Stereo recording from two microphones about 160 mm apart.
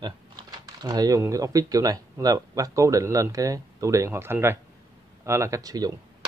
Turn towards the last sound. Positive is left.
turn(degrees=-20)  # may be behind; listen again after turning